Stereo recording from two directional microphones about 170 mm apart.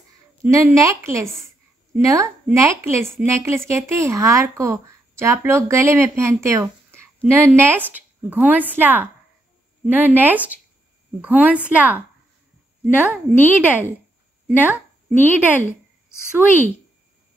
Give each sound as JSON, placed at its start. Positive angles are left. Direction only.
{"t": 0.4, "sound": "speech", "side_deg": -20}
{"t": 12.8, "sound": "a woman's voice", "side_deg": 10}
{"t": 14.5, "sound": "speech", "side_deg": -10}
{"t": 15.0, "sound": "a woman's voice", "side_deg": 10}